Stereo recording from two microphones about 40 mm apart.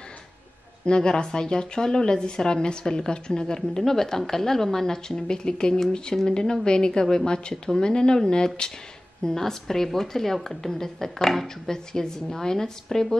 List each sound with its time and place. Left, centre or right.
0.8 s a woman's voice: left